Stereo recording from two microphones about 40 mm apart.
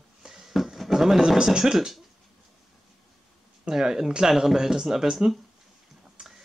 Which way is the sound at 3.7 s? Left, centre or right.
Centre.